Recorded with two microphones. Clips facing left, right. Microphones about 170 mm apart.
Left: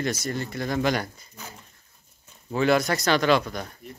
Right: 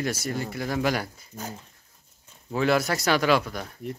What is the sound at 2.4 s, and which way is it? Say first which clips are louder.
Speech: left 2 dB; centre (ahead or behind).